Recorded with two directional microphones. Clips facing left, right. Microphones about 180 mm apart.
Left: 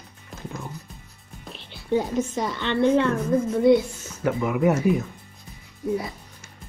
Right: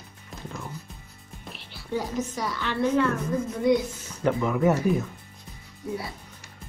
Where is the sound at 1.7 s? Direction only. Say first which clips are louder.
Left 6 dB; 25° left (ahead or behind).